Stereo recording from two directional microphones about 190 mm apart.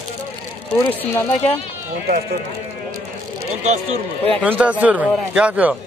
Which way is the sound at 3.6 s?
35° right (ahead or behind).